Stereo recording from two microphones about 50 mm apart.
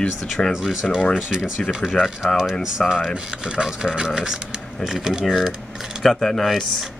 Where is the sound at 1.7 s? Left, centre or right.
Centre.